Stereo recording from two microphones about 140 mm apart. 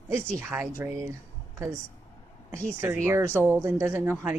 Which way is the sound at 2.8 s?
20° right (ahead or behind).